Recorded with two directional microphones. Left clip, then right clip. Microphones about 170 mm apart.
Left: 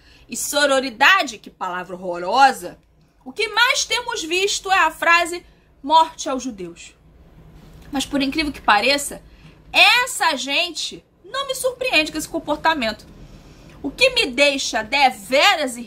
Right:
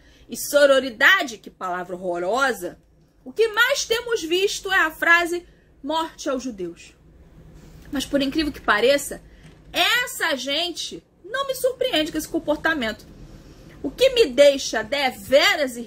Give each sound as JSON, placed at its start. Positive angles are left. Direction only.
{"t": 0.3, "sound": "a woman's voice", "side_deg": 20}
{"t": 7.9, "sound": "a woman's voice", "side_deg": 20}
{"t": 14.1, "sound": "a woman's voice", "side_deg": 20}